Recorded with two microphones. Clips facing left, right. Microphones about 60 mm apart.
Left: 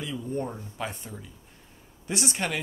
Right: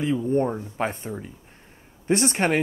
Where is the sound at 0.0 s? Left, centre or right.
Right.